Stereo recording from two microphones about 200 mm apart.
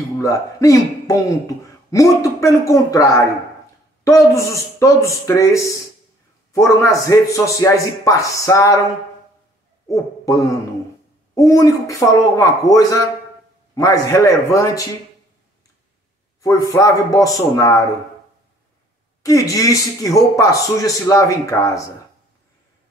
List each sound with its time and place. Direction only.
0.2 s speech: 15° left (ahead or behind)
9.8 s speech: 15° left (ahead or behind)
16.3 s a sound: 15° left (ahead or behind)
16.7 s speech: 15° left (ahead or behind)
19.2 s speech: 15° left (ahead or behind)